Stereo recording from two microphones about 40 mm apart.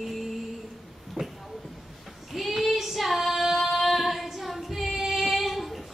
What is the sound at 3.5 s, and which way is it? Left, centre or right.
Female singing, centre.